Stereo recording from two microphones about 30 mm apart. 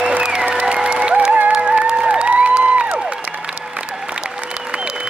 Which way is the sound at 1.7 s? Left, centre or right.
Right.